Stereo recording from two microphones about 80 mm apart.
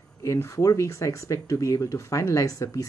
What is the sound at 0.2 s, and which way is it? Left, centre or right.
Speech, left.